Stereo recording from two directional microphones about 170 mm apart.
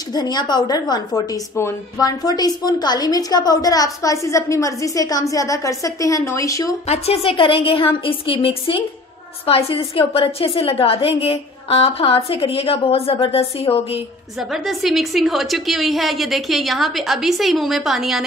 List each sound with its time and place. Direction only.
0.1 s a woman's voice: 25° left (ahead or behind)
6.9 s a woman's voice: 35° left (ahead or behind)
14.5 s a woman's voice: centre (ahead or behind)